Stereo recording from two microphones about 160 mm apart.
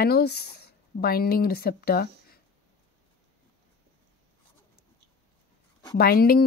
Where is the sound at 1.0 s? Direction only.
70° left (ahead or behind).